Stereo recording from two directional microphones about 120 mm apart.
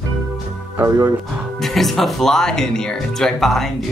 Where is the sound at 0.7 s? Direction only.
25° right (ahead or behind).